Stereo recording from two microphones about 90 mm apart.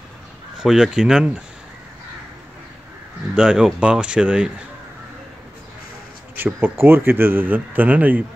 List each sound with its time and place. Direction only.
0.6 s speech: 5° right (ahead or behind)
3.3 s speech: 5° right (ahead or behind)
6.3 s speech: 25° right (ahead or behind)